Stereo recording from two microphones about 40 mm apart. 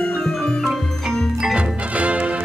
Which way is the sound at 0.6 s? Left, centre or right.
Centre.